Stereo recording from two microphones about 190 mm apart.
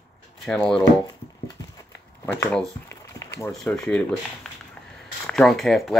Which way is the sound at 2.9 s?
15° left (ahead or behind).